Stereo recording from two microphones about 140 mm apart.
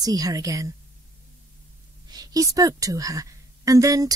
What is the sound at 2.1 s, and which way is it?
A woman's voice, 25° right (ahead or behind).